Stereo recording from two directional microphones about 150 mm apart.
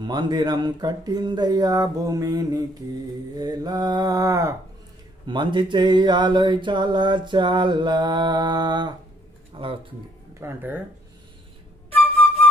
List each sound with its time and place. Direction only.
0.0 s speech: 30° right (ahead or behind)
5.2 s a sound: 30° right (ahead or behind)
9.5 s speech: 35° right (ahead or behind)
10.3 s speech: 15° right (ahead or behind)